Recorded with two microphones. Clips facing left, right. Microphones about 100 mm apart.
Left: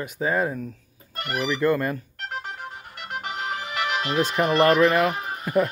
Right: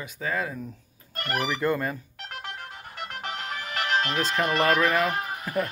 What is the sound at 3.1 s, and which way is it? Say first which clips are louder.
Music: left 6 dB; 5° left (ahead or behind).